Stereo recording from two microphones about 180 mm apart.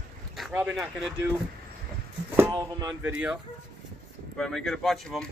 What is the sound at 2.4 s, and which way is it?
Speech, 20° right (ahead or behind).